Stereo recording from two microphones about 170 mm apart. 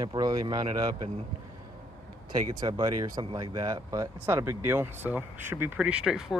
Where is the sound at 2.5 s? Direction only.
20° right (ahead or behind).